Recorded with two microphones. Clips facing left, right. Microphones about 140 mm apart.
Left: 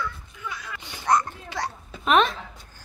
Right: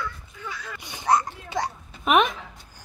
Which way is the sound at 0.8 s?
15° right (ahead or behind).